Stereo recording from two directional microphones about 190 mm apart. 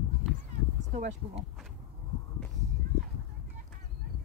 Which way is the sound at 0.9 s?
40° right (ahead or behind).